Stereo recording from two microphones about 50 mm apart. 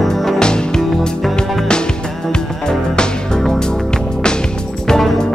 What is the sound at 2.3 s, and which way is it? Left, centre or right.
Music, centre.